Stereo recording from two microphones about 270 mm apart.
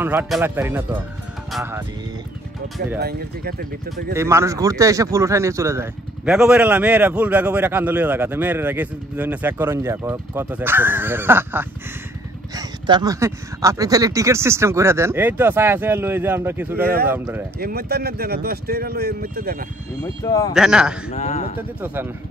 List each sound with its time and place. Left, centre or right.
0.0 s speech: centre
3.0 s speech: right
4.1 s speech: centre
16.8 s speech: right
17.1 s speech: centre
17.6 s speech: right
20.0 s speech: centre
20.5 s speech: centre
21.1 s a man's voice: left
21.5 s speech: centre